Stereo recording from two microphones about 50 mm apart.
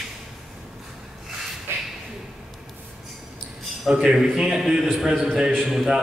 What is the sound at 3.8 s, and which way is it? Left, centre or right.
A man's voice, centre.